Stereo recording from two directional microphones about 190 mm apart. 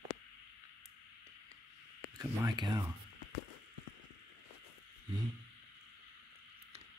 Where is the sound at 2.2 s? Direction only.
20° right (ahead or behind).